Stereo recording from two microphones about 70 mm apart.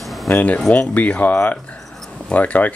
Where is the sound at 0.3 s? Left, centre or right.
Left.